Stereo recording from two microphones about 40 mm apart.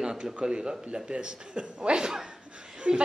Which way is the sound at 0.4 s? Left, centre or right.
Right.